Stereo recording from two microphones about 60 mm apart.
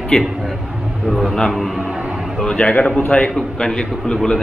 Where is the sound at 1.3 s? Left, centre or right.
Centre.